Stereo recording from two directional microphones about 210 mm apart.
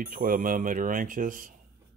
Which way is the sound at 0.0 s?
40° right (ahead or behind).